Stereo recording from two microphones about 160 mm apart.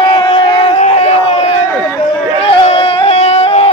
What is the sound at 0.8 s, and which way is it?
Crowd, 45° left (ahead or behind).